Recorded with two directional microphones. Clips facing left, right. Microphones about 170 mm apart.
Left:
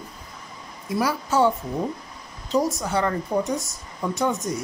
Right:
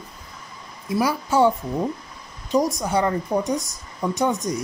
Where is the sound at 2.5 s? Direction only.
15° right (ahead or behind).